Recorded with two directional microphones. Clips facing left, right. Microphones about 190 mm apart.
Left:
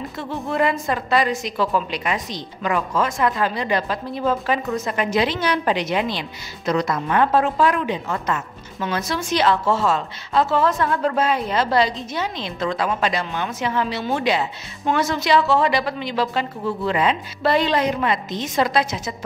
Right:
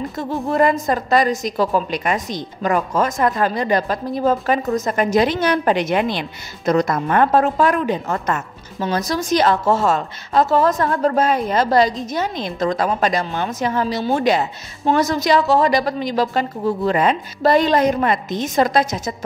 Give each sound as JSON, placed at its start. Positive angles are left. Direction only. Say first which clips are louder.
{"t": 0.2, "sound": "a woman's voice", "louder": "right 4 dB", "side_deg": -40}
{"t": 8.7, "sound": "a woman's voice", "louder": "right 4 dB", "side_deg": -35}